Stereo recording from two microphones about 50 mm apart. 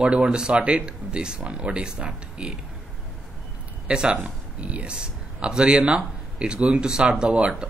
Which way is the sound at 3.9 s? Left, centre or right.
Centre.